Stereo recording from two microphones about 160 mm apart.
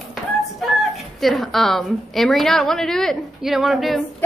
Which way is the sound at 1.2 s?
Centre (ahead or behind).